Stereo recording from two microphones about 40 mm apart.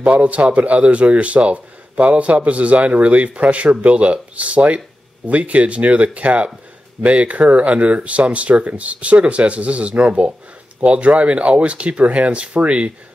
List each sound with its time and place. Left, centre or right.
0.0 s a man's voice: right